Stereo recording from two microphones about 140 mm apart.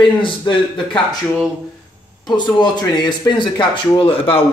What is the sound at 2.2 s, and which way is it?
A man's voice, 30° left (ahead or behind).